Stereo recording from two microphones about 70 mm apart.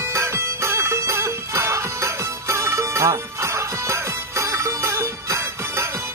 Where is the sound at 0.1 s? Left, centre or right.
Right.